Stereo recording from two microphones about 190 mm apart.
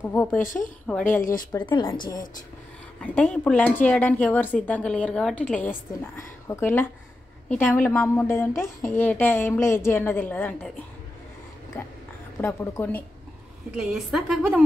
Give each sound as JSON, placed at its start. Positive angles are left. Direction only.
{"t": 0.1, "sound": "a woman's voice", "side_deg": 10}
{"t": 0.4, "sound": "speech", "side_deg": 45}
{"t": 0.9, "sound": "a woman's voice", "side_deg": 5}
{"t": 1.5, "sound": "speech", "side_deg": 25}
{"t": 3.0, "sound": "a woman's voice", "side_deg": 5}
{"t": 11.7, "sound": "a woman's voice", "side_deg": 10}
{"t": 13.7, "sound": "a woman's voice", "side_deg": -5}